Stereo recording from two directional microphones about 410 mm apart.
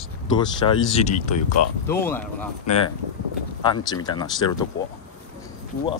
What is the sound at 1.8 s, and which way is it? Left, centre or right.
Snicker, centre.